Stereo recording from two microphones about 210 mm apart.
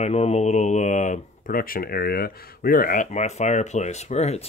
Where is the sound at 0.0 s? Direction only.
30° left (ahead or behind).